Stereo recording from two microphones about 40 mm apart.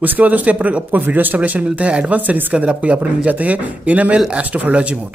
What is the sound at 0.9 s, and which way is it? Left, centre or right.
Speech, right.